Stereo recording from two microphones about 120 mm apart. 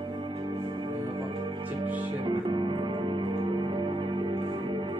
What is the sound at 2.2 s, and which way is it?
Music, 40° right (ahead or behind).